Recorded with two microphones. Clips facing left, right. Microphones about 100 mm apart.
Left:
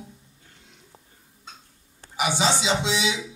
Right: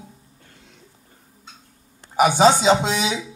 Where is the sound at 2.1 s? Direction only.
45° right (ahead or behind).